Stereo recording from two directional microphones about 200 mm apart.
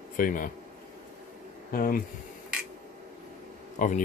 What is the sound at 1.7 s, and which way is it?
Speech, 45° left (ahead or behind).